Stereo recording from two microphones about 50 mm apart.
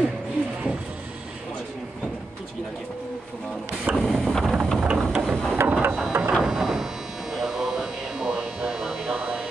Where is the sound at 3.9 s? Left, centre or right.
Centre.